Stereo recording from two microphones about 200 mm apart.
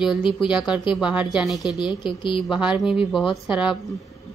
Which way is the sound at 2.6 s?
5° right (ahead or behind).